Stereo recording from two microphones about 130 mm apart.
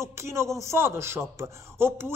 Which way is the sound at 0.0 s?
20° right (ahead or behind).